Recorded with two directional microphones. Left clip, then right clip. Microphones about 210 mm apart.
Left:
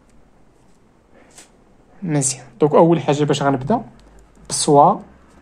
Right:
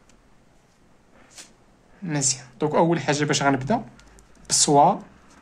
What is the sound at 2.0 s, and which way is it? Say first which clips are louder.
A woman's voice: left 4 dB; 30° left (ahead or behind).